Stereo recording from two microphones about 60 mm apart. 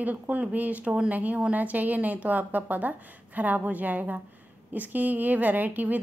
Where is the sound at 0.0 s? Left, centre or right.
Right.